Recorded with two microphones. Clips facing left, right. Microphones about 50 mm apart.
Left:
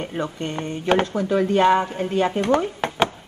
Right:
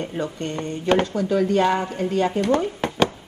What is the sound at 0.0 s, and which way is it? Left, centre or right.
Speech, left.